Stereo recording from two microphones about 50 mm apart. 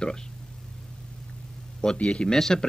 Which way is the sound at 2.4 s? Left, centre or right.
Centre.